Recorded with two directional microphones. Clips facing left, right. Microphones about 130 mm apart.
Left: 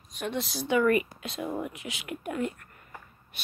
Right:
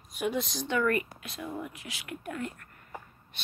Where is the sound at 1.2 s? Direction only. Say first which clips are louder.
Left 5 dB; 25° left (ahead or behind).